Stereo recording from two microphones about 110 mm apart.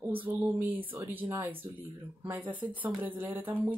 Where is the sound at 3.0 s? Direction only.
15° right (ahead or behind).